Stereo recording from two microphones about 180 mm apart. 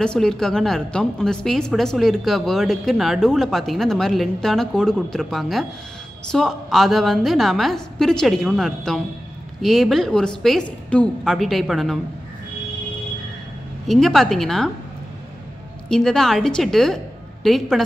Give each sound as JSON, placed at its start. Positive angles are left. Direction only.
{"t": 0.0, "sound": "a woman's voice", "side_deg": 5}
{"t": 13.8, "sound": "a woman's voice", "side_deg": 0}
{"t": 15.9, "sound": "a woman's voice", "side_deg": 5}